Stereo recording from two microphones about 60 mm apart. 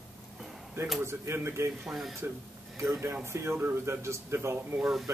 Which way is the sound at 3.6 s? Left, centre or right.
Right.